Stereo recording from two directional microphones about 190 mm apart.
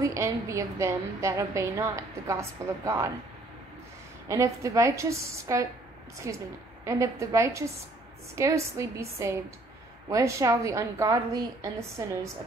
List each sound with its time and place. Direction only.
0.0 s a woman's voice: 15° right (ahead or behind)
4.3 s a woman's voice: 15° right (ahead or behind)